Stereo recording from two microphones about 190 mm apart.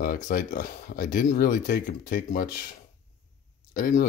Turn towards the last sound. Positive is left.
turn(degrees=45)  # may be behind; listen again after turning